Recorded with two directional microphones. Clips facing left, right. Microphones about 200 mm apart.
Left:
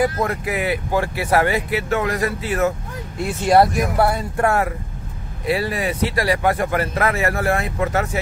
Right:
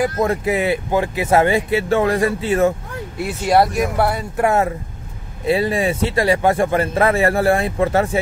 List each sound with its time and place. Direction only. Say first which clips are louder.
0.2 s speech: right 4 dB; 25° right (ahead or behind)
3.2 s speech: left 1 dB; 5° right (ahead or behind)
4.4 s speech: right 3 dB; 20° right (ahead or behind)